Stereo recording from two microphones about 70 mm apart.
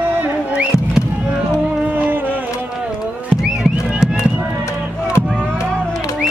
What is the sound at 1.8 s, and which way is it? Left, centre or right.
Music, right.